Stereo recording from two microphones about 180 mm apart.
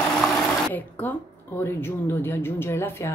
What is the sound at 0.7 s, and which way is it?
Speech, 10° left (ahead or behind).